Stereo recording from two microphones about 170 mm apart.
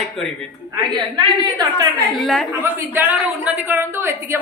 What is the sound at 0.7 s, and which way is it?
Speech, 25° right (ahead or behind).